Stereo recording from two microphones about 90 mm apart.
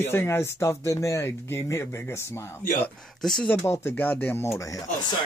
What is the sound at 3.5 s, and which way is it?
Speech, 30° left (ahead or behind).